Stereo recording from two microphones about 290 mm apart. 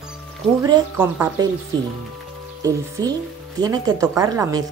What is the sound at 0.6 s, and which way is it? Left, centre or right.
Speech, centre.